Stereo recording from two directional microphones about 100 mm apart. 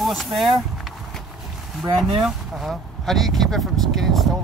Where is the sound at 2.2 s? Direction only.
Centre (ahead or behind).